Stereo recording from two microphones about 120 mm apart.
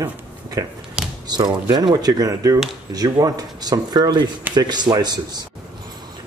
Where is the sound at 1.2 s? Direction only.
35° right (ahead or behind).